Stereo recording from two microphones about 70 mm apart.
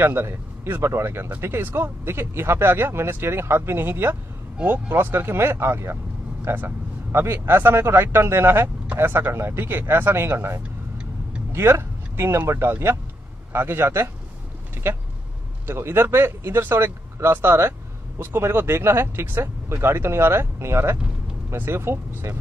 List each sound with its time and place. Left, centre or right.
0.0 s speech: right
15.6 s speech: right